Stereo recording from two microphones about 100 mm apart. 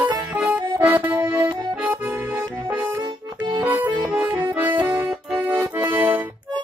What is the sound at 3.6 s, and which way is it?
Accordion, 20° right (ahead or behind).